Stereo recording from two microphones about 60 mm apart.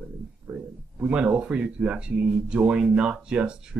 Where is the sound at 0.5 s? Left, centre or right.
Centre.